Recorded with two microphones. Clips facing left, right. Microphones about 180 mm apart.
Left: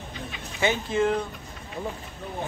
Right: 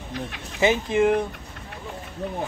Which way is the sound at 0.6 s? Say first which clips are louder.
Right 4 dB; 20° right (ahead or behind).